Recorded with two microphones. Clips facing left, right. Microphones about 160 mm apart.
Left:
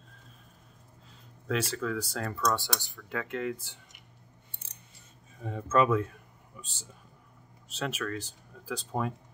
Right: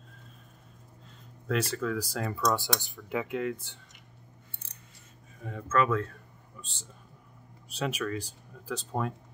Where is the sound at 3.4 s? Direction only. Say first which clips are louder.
Right 1 dB; 5° left (ahead or behind).